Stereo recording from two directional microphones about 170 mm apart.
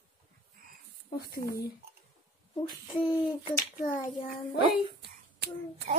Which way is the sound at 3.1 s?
30° left (ahead or behind).